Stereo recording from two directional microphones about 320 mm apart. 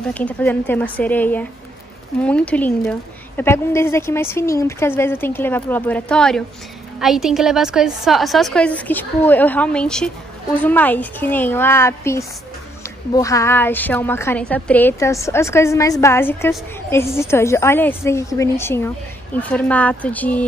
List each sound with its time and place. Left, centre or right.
0.1 s a woman's voice: centre